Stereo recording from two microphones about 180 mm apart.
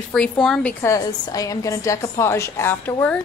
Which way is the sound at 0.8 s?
20° left (ahead or behind).